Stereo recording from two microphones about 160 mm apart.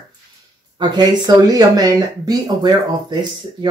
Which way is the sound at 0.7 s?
25° right (ahead or behind).